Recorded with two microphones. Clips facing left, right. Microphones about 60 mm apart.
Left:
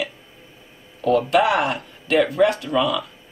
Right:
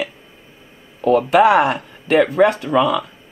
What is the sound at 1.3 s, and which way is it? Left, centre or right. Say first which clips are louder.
Speech: right 6 dB; right.